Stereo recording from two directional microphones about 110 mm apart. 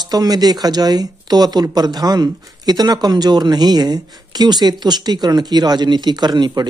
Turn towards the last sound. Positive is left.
turn(degrees=-40)  # may be behind; listen again after turning